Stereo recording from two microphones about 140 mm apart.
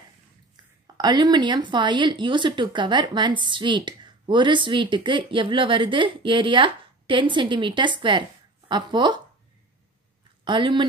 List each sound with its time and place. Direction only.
0.6 s a sound: 30° right (ahead or behind)
0.9 s speech: 30° right (ahead or behind)
10.4 s speech: 35° right (ahead or behind)